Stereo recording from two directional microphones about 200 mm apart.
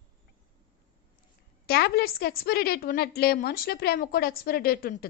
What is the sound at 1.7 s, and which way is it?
A woman's voice, 50° left (ahead or behind).